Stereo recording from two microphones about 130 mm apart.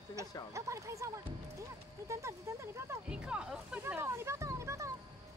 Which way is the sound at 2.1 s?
20° right (ahead or behind).